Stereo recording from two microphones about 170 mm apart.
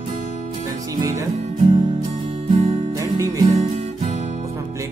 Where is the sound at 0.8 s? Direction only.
20° right (ahead or behind).